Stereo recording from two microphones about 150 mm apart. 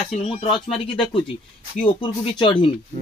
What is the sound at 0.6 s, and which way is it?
Speech, 35° left (ahead or behind).